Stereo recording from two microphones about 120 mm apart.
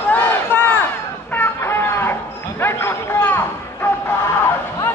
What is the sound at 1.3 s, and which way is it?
Music, 20° left (ahead or behind).